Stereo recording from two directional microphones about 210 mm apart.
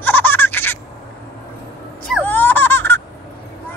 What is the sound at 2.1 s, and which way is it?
Baby laughter, 10° left (ahead or behind).